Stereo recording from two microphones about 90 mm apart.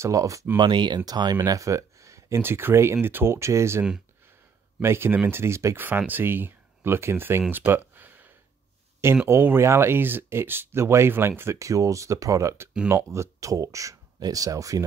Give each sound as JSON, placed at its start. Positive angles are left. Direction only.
{"t": 0.0, "sound": "speech", "side_deg": -35}
{"t": 0.6, "sound": "speech", "side_deg": -60}
{"t": 1.3, "sound": "speech", "side_deg": -40}
{"t": 4.8, "sound": "speech", "side_deg": -25}
{"t": 5.8, "sound": "speech", "side_deg": -20}
{"t": 7.4, "sound": "a sound", "side_deg": -25}
{"t": 9.0, "sound": "speech", "side_deg": -30}